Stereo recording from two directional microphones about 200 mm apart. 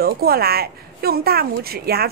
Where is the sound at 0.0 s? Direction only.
50° right (ahead or behind).